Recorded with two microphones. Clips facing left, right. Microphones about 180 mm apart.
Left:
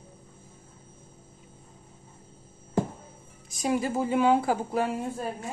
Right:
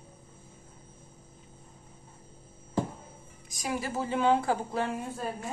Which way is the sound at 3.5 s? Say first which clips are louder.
Left 6 dB; 25° left (ahead or behind).